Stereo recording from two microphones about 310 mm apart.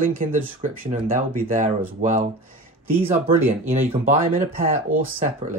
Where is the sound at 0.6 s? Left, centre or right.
Right.